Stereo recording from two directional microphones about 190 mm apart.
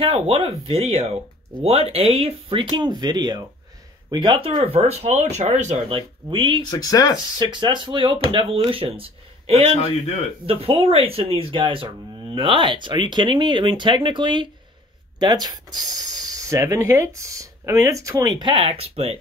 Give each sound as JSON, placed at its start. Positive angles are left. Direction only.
{"t": 0.0, "sound": "speech", "side_deg": -30}
{"t": 6.6, "sound": "speech", "side_deg": 20}
{"t": 7.3, "sound": "speech", "side_deg": -25}
{"t": 9.8, "sound": "a man's voice", "side_deg": 35}
{"t": 10.4, "sound": "speech", "side_deg": -30}